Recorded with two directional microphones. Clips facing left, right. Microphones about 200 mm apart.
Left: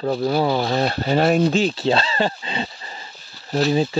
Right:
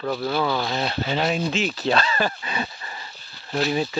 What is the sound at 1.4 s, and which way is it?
Speech, 30° left (ahead or behind).